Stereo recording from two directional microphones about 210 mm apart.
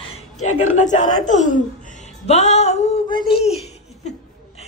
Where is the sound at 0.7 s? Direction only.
35° left (ahead or behind).